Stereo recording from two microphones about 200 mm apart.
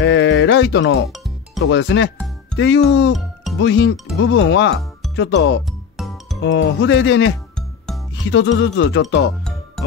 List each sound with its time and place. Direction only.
0.0 s a sound: 65° left (ahead or behind)
1.1 s music: centre (ahead or behind)
1.7 s speech: 65° left (ahead or behind)